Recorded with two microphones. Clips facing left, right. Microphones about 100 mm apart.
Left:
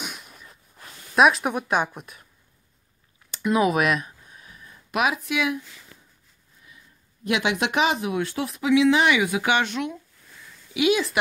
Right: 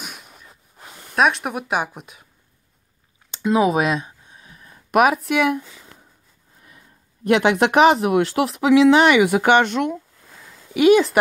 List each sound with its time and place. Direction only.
0.0 s snort: centre (ahead or behind)
0.5 s rub: 25° right (ahead or behind)
1.1 s speech: centre (ahead or behind)
1.6 s speech: 10° right (ahead or behind)
3.3 s a sound: 30° right (ahead or behind)
4.6 s speech: 50° right (ahead or behind)
7.2 s speech: 55° right (ahead or behind)
10.2 s a sound: 90° right
10.7 s speech: 50° right (ahead or behind)